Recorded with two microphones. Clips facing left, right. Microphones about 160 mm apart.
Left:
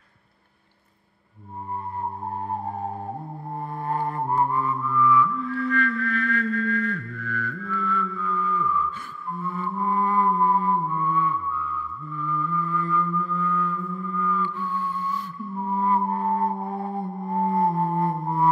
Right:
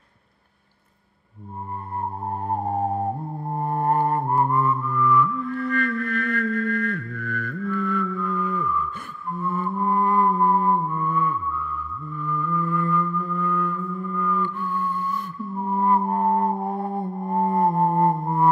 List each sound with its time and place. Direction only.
3.6 s music: 50° right (ahead or behind)